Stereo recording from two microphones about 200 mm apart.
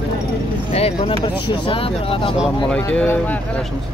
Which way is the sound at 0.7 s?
30° left (ahead or behind).